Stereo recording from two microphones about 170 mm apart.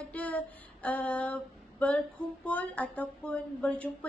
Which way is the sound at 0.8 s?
10° left (ahead or behind).